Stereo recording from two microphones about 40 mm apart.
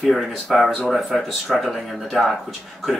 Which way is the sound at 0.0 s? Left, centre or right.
Centre.